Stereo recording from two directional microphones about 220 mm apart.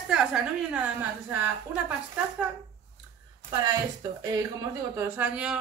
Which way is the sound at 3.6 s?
15° right (ahead or behind).